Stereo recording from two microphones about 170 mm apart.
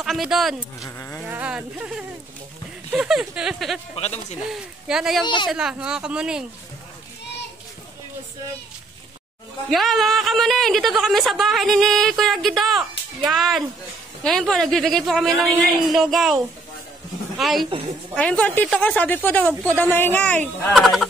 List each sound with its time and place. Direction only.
0.0 s a woman's voice: centre (ahead or behind)
0.8 s sheep: 15° left (ahead or behind)
1.2 s a sound: 10° right (ahead or behind)
2.9 s a woman's voice: 5° right (ahead or behind)
3.9 s speech: 40° left (ahead or behind)
4.4 s a woman's voice: 5° right (ahead or behind)
5.2 s speech: 25° left (ahead or behind)
5.5 s a woman's voice: 5° right (ahead or behind)
9.7 s a woman's voice: centre (ahead or behind)
17.4 s a woman's voice: centre (ahead or behind)
17.6 s a woman's voice: 35° right (ahead or behind)
18.1 s a woman's voice: 5° left (ahead or behind)